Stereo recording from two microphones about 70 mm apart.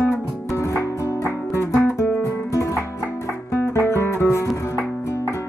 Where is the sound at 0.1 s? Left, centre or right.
Left.